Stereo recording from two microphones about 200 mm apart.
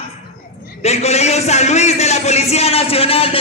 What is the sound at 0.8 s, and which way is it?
A man's voice, 30° left (ahead or behind).